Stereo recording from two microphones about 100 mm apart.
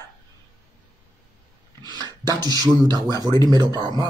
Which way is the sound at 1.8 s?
45° right (ahead or behind).